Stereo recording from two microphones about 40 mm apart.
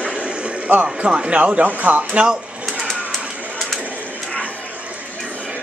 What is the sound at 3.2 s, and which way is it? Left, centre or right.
Pigeon, right.